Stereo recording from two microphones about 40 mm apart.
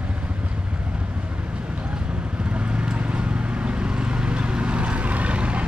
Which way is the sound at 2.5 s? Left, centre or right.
Right.